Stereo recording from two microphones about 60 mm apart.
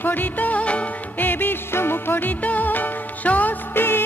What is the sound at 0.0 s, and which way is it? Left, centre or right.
Music, left.